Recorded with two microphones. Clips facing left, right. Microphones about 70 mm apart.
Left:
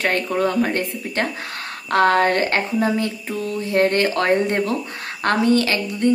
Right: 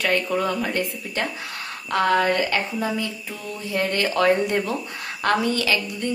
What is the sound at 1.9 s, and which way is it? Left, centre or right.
A woman's voice, left.